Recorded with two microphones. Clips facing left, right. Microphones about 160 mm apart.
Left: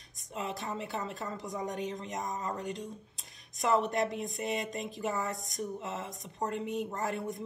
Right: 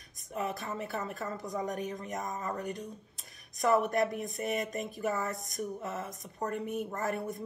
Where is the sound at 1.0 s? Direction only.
50° right (ahead or behind).